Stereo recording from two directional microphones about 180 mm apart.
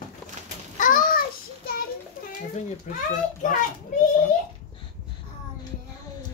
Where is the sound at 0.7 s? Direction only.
45° left (ahead or behind).